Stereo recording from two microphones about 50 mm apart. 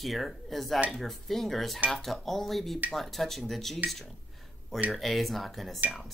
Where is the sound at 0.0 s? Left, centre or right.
Centre.